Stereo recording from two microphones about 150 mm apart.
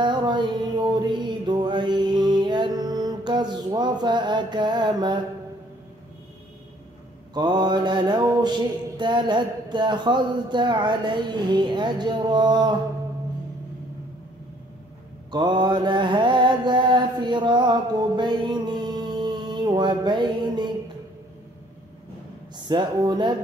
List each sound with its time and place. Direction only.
0.0 s music: 30° right (ahead or behind)
7.3 s mantra: 30° right (ahead or behind)
15.3 s mantra: 30° right (ahead or behind)
22.7 s mantra: 30° right (ahead or behind)